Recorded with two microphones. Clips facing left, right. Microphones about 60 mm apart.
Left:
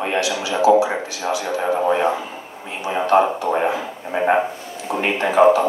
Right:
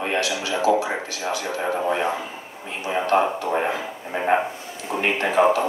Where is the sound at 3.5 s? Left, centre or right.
Centre.